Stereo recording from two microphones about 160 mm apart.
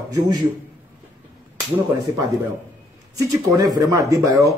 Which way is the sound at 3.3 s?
20° right (ahead or behind).